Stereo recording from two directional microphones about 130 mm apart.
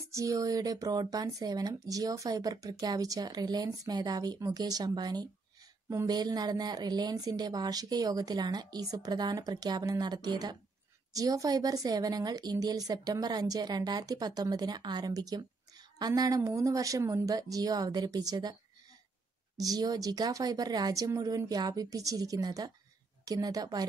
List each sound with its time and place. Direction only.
0.1 s speech: 25° right (ahead or behind)